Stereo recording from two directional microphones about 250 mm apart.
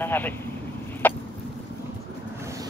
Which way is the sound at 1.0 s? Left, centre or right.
Centre.